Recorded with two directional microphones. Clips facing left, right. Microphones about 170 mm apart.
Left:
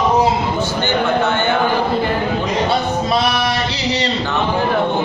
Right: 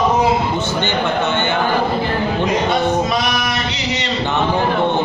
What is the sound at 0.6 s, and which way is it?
Speech, 20° right (ahead or behind).